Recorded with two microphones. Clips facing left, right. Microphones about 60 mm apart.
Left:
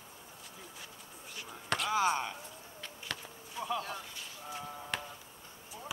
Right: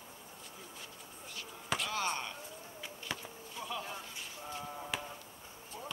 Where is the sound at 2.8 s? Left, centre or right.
Centre.